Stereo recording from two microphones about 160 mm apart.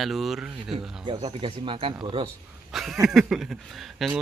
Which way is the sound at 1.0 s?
30° right (ahead or behind).